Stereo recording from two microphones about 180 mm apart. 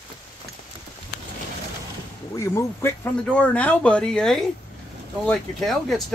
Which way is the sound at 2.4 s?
15° left (ahead or behind).